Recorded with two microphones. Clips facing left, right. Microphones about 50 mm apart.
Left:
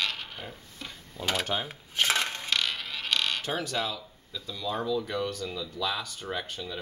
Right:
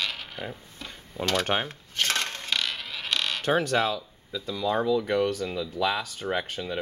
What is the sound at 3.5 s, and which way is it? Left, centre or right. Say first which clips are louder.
Speech: right 7 dB; right.